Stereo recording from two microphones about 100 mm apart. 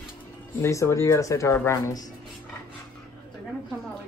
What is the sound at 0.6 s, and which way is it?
Speech, 30° left (ahead or behind).